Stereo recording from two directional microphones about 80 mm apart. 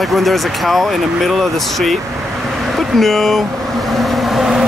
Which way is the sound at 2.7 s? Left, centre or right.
Centre.